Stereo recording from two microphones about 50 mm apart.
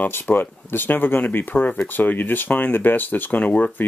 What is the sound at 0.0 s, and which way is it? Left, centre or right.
Speech, left.